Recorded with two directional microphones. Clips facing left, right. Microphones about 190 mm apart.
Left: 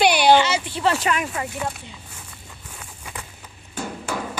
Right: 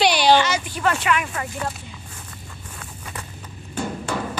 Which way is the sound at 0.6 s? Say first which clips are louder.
Even; 25° left (ahead or behind).